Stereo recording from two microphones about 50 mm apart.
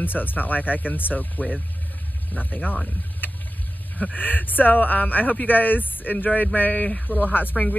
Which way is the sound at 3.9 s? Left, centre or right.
Left.